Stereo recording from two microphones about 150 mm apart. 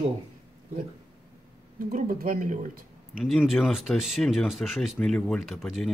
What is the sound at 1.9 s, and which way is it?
Speech, 60° right (ahead or behind).